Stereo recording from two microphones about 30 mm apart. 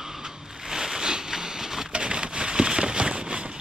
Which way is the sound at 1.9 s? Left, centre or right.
Right.